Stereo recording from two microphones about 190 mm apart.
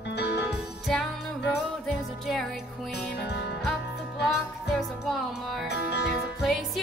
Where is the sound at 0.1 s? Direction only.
60° left (ahead or behind).